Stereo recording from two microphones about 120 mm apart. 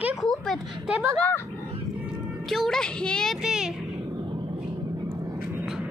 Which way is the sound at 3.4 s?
5° right (ahead or behind).